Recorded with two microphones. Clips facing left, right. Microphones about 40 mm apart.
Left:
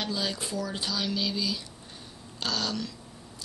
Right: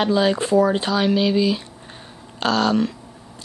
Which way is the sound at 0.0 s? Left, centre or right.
Right.